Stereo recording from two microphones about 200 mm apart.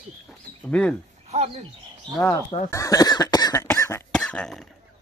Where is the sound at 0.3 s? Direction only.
5° left (ahead or behind).